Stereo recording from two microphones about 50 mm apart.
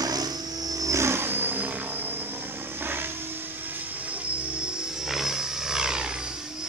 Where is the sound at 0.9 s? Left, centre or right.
Right.